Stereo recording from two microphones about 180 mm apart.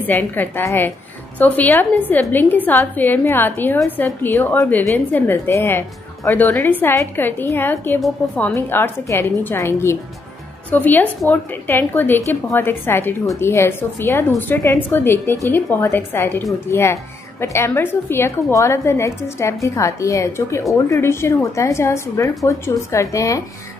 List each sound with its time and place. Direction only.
0.0 s a woman's voice: 10° left (ahead or behind)